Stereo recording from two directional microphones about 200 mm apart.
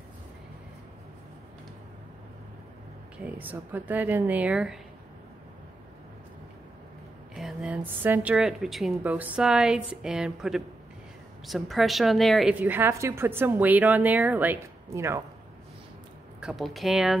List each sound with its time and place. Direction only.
3.3 s a woman's voice: 10° right (ahead or behind)
7.3 s a woman's voice: 5° right (ahead or behind)
16.3 s speech: 5° right (ahead or behind)